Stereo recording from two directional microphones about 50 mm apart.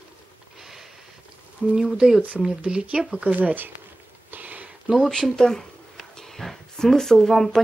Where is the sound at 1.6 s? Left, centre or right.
Centre.